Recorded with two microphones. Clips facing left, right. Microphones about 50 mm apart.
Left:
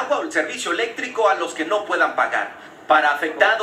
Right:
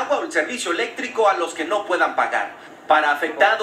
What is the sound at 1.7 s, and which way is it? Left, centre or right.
Speech, left.